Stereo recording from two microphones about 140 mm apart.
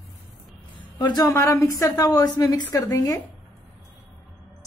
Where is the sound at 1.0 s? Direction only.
30° left (ahead or behind).